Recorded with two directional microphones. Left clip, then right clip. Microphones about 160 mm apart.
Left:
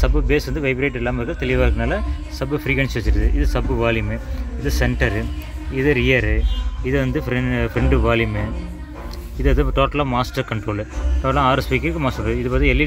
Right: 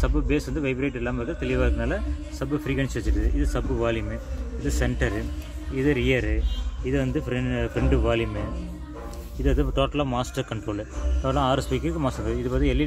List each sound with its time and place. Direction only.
0.0 s speech: 10° left (ahead or behind)
9.4 s speech: 15° left (ahead or behind)